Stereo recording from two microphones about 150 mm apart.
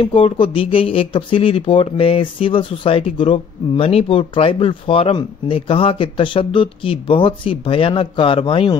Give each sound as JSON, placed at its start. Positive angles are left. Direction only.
{"t": 0.0, "sound": "speech", "side_deg": 35}